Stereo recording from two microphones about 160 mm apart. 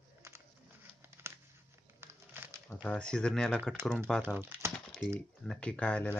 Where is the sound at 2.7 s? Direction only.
5° left (ahead or behind).